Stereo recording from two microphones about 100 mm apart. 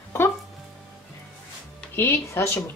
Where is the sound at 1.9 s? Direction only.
25° left (ahead or behind).